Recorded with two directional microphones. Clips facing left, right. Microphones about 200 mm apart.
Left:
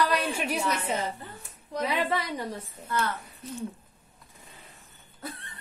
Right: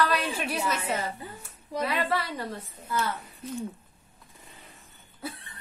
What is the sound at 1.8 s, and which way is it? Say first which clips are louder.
Speech: even; 15° left (ahead or behind).